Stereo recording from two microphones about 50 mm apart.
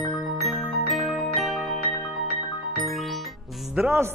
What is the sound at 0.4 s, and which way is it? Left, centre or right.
Glockenspiel, centre.